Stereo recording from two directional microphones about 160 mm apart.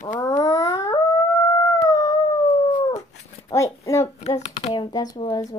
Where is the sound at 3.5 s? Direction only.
20° left (ahead or behind).